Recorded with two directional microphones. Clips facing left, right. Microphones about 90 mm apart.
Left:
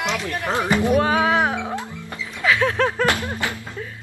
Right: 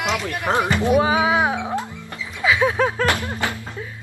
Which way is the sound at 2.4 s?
10° right (ahead or behind).